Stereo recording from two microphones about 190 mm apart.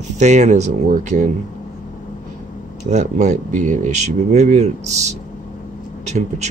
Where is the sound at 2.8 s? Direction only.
40° right (ahead or behind).